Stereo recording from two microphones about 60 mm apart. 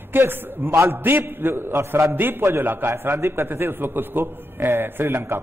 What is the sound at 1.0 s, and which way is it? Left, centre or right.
A man's voice, right.